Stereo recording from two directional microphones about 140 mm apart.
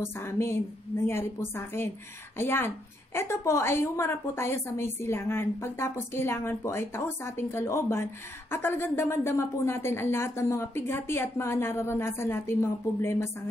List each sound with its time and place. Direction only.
0.0 s a woman's voice: 20° left (ahead or behind)